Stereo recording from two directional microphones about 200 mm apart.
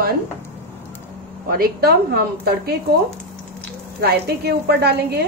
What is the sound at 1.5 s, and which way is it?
A woman's voice, 50° right (ahead or behind).